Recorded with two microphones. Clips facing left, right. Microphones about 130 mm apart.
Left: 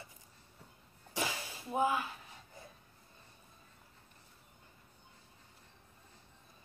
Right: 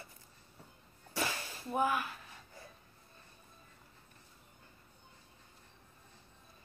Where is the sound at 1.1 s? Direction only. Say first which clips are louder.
Even; 15° left (ahead or behind).